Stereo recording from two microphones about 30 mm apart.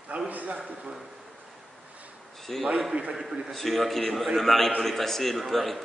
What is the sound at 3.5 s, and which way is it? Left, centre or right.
A man's voice, centre.